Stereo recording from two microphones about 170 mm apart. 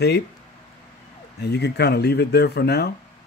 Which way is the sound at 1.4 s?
75° left (ahead or behind).